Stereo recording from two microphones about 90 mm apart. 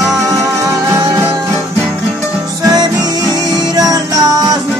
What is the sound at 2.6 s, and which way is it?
Music, 45° right (ahead or behind).